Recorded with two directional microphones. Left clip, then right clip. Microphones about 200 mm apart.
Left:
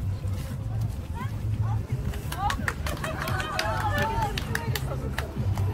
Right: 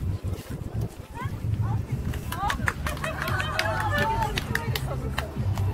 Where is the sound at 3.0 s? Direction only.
55° left (ahead or behind).